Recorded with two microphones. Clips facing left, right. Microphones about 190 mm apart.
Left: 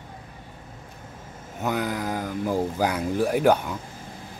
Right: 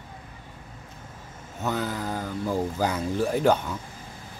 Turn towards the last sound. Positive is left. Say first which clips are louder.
# left 2 dB
turn(degrees=10)  # may be behind; listen again after turning